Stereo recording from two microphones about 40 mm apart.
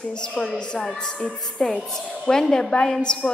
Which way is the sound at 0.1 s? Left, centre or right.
Left.